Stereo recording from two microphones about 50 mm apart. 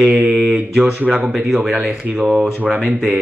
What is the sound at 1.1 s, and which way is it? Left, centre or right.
Speech, centre.